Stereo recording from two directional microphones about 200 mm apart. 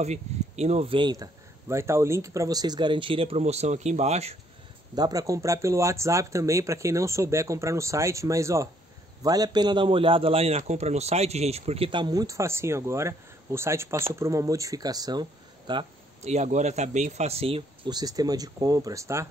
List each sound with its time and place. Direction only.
0.0 s speech: 35° right (ahead or behind)
4.9 s speech: 20° right (ahead or behind)